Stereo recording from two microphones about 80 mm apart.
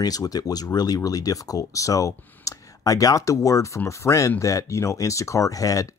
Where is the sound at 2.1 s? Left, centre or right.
Left.